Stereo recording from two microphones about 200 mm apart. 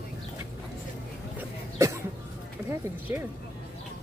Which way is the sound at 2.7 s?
10° right (ahead or behind).